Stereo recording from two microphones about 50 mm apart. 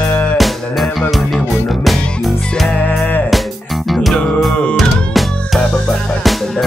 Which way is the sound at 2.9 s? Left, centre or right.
Left.